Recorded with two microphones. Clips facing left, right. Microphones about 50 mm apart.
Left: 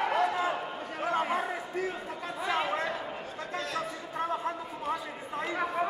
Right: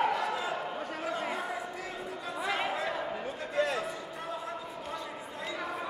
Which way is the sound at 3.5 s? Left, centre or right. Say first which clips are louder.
Right 5 dB; right.